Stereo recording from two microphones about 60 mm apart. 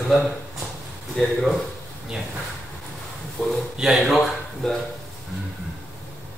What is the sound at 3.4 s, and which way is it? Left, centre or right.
Speech, left.